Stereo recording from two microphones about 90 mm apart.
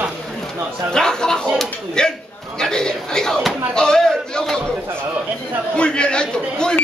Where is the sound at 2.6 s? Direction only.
10° left (ahead or behind).